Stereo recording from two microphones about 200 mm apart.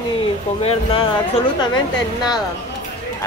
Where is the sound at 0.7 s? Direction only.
25° left (ahead or behind).